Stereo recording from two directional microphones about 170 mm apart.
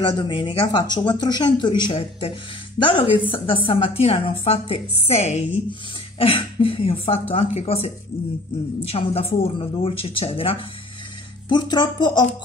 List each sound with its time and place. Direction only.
0.2 s a woman's voice: 30° left (ahead or behind)